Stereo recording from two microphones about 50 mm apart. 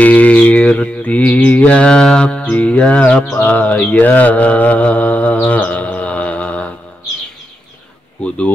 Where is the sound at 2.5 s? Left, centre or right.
Left.